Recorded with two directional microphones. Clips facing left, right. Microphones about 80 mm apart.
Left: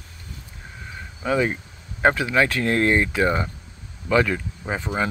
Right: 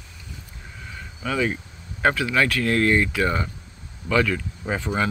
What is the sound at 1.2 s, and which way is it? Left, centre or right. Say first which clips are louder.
Speech: left 3 dB; left.